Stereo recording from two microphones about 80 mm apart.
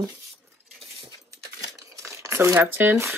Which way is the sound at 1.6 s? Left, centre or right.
Right.